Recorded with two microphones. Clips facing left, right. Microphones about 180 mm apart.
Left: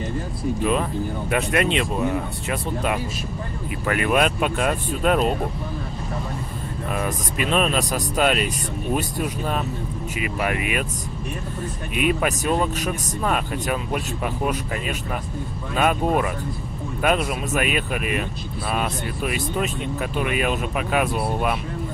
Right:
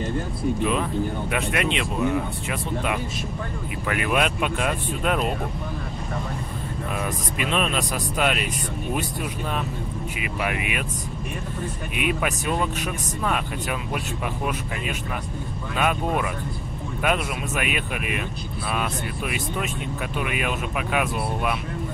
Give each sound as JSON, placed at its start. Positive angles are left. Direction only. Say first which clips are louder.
{"t": 1.3, "sound": "speech", "louder": "left 7 dB", "side_deg": 40}
{"t": 3.8, "sound": "speech", "louder": "left 3 dB", "side_deg": 40}
{"t": 7.3, "sound": "speech", "louder": "left 4 dB", "side_deg": 40}
{"t": 10.2, "sound": "speech", "louder": "left 3 dB", "side_deg": 40}
{"t": 12.0, "sound": "speech", "louder": "left 4 dB", "side_deg": 40}
{"t": 15.8, "sound": "speech", "louder": "left 4 dB", "side_deg": 40}